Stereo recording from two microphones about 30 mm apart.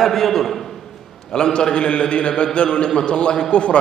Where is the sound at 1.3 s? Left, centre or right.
Left.